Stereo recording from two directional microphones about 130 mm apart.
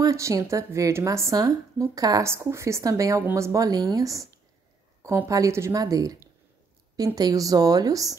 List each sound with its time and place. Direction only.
0.0 s a woman's voice: 25° right (ahead or behind)